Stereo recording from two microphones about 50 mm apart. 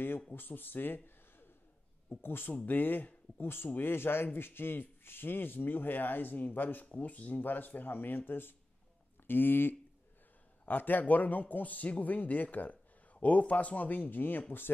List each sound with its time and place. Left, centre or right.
0.3 s a man's voice: left
2.2 s a man's voice: left